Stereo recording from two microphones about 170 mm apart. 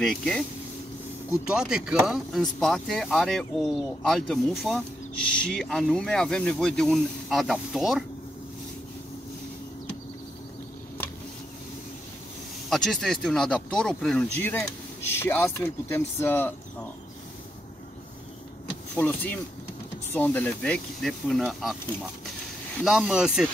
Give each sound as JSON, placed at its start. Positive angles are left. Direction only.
{"t": 0.0, "sound": "speech", "side_deg": 0}
{"t": 12.6, "sound": "speech", "side_deg": 0}
{"t": 18.9, "sound": "speech", "side_deg": 10}
{"t": 22.8, "sound": "speech", "side_deg": -5}